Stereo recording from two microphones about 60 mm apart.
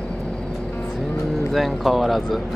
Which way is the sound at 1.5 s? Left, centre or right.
Centre.